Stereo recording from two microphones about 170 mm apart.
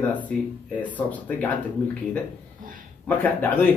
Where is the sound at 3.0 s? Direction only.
10° left (ahead or behind).